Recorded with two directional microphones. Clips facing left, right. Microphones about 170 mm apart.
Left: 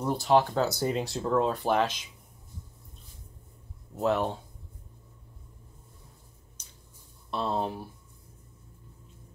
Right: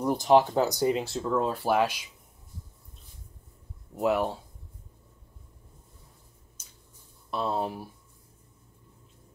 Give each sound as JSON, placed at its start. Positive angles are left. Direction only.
{"t": 0.0, "sound": "speech", "side_deg": -15}
{"t": 0.9, "sound": "speech", "side_deg": 0}
{"t": 3.9, "sound": "speech", "side_deg": -10}
{"t": 6.6, "sound": "squish", "side_deg": -5}
{"t": 7.2, "sound": "speech", "side_deg": -5}